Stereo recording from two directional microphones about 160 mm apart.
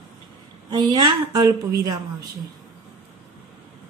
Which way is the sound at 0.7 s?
25° right (ahead or behind).